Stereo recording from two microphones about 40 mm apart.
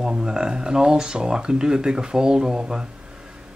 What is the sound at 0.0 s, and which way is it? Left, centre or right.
Speech, centre.